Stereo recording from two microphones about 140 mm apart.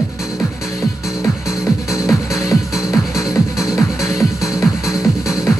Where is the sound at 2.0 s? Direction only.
20° left (ahead or behind).